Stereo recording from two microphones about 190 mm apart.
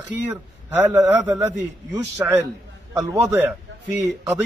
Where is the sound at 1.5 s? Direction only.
15° right (ahead or behind).